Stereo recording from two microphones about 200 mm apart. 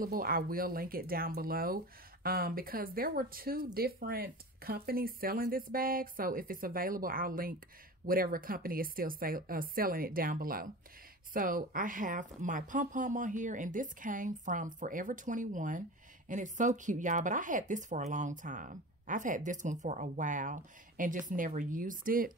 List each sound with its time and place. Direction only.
0.0 s a woman's voice: 45° right (ahead or behind)